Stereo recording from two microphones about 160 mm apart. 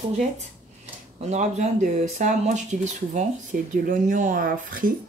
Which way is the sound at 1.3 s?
45° right (ahead or behind).